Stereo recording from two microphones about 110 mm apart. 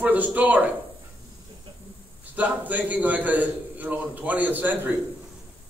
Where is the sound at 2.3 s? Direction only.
15° right (ahead or behind).